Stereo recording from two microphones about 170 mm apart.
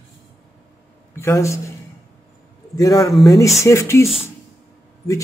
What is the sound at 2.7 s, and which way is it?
Speech, 20° left (ahead or behind).